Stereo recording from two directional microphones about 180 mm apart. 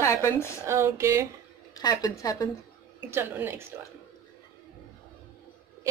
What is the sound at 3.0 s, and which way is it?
Speech, 10° right (ahead or behind).